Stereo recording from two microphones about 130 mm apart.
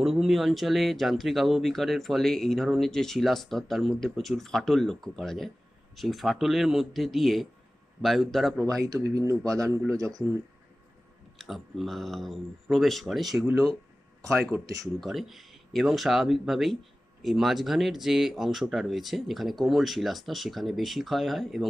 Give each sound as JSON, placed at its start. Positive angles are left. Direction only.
{"t": 0.0, "sound": "speech", "side_deg": 0}
{"t": 8.8, "sound": "speech", "side_deg": -30}
{"t": 11.3, "sound": "speech", "side_deg": 0}
{"t": 13.5, "sound": "speech", "side_deg": -25}
{"t": 15.0, "sound": "speech", "side_deg": 0}